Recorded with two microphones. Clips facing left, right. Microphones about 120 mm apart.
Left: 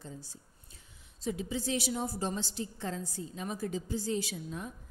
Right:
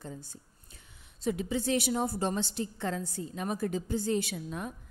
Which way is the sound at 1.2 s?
60° right (ahead or behind).